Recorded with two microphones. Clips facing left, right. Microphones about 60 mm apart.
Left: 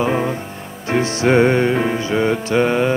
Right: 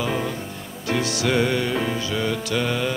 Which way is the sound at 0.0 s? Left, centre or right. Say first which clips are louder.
Left 6 dB; left.